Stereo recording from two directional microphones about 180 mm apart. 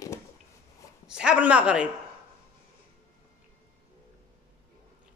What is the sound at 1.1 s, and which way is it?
Speech, 5° right (ahead or behind).